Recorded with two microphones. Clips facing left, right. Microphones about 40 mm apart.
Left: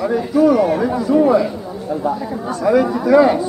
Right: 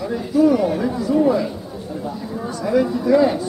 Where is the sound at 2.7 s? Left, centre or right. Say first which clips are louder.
Left 3 dB; left.